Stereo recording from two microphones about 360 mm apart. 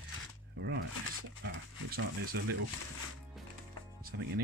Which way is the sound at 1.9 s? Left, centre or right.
Right.